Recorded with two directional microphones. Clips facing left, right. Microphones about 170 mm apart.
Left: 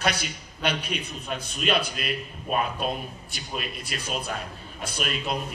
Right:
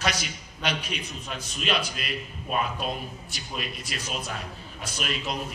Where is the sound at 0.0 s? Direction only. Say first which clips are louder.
Left 2 dB; 55° left (ahead or behind).